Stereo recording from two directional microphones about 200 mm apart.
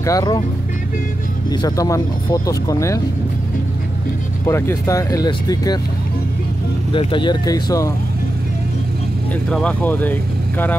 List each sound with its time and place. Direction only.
0.0 s speech: 15° left (ahead or behind)
1.5 s speech: 20° left (ahead or behind)
4.5 s speech: 15° left (ahead or behind)
6.9 s speech: 25° left (ahead or behind)
9.3 s speech: 5° left (ahead or behind)